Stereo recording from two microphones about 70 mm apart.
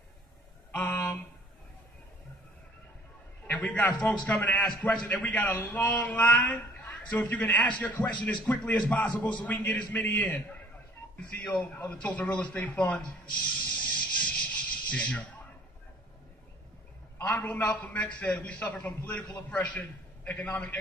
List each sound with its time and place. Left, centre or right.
3.4 s a man's voice: centre
17.2 s a man's voice: left